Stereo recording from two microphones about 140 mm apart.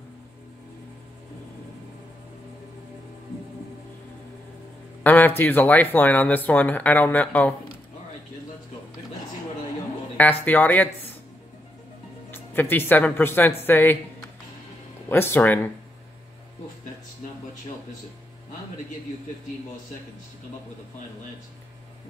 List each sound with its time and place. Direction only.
5.0 s speech: 15° left (ahead or behind)
10.1 s speech: 10° left (ahead or behind)
12.3 s speech: 15° left (ahead or behind)
15.0 s speech: 15° left (ahead or behind)